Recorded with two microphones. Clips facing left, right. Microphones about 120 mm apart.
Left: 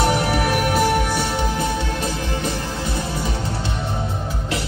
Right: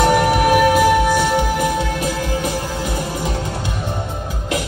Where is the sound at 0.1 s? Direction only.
45° right (ahead or behind).